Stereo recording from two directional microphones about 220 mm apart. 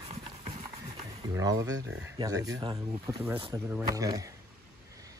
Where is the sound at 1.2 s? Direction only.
15° right (ahead or behind).